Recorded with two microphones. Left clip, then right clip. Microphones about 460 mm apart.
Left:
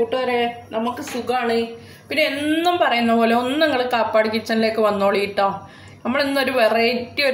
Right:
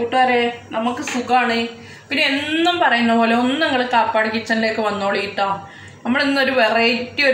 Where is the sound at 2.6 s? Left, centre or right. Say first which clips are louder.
Right 2 dB; left.